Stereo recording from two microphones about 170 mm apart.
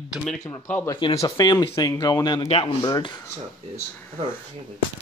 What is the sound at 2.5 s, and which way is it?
Speech, 35° left (ahead or behind).